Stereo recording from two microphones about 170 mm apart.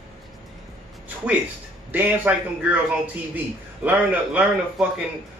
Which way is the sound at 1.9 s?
10° right (ahead or behind).